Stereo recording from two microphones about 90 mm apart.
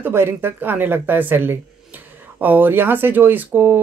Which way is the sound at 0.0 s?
25° right (ahead or behind).